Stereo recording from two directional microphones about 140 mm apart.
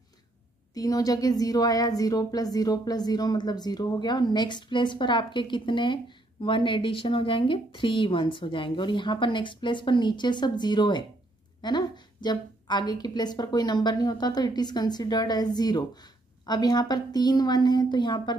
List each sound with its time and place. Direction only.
0.7 s a woman's voice: 25° left (ahead or behind)